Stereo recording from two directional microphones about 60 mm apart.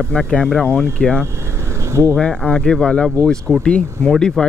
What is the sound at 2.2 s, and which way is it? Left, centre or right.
Speech, centre.